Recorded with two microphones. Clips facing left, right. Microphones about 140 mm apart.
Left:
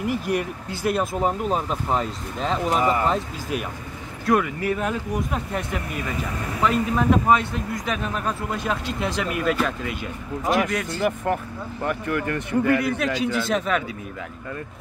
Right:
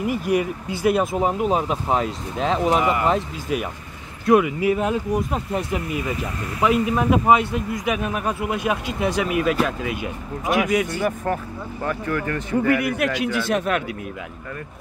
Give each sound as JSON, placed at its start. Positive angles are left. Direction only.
{"t": 0.0, "sound": "speech", "side_deg": 0}
{"t": 2.8, "sound": "speech", "side_deg": 30}
{"t": 3.1, "sound": "speech", "side_deg": 0}
{"t": 5.3, "sound": "speech", "side_deg": -35}
{"t": 6.6, "sound": "speech", "side_deg": -10}
{"t": 11.8, "sound": "speech", "side_deg": 15}
{"t": 12.6, "sound": "speech", "side_deg": -10}